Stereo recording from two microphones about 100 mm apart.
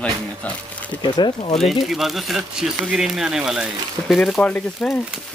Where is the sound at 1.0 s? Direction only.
50° left (ahead or behind).